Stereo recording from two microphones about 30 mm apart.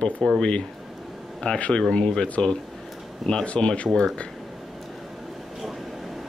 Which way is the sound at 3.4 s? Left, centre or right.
Left.